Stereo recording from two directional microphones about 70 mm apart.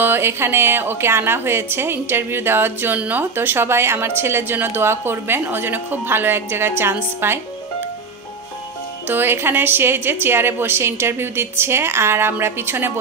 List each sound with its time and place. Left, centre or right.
0.0 s a woman's voice: right
9.0 s a woman's voice: right